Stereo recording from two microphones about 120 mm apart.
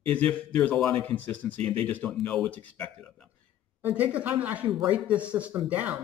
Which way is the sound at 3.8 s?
15° right (ahead or behind).